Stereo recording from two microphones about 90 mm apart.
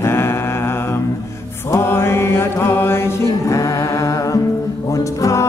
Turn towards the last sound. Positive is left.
turn(degrees=35)  # may be behind; listen again after turning